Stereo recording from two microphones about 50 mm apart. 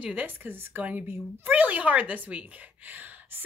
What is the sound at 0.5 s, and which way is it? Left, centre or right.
Speech, right.